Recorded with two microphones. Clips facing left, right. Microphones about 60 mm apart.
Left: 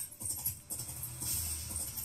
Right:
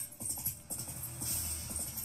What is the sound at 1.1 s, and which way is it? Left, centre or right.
Music, right.